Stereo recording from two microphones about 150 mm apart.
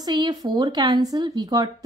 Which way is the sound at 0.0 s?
25° right (ahead or behind).